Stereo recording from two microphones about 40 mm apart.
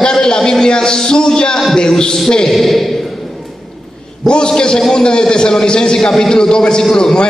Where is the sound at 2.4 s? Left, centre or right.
Centre.